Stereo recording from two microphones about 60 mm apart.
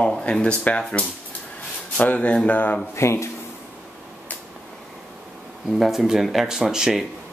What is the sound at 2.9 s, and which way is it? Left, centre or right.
Speech, left.